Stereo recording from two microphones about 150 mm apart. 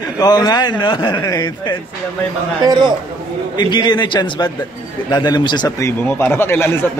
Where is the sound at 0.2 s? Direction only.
25° left (ahead or behind).